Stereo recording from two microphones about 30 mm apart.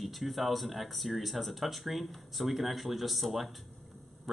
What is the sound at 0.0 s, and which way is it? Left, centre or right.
Speech, centre.